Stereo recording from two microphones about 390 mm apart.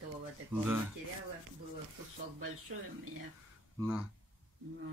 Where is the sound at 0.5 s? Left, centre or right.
Centre.